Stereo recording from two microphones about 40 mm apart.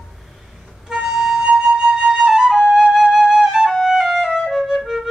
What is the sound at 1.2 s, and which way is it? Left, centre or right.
Flute, centre.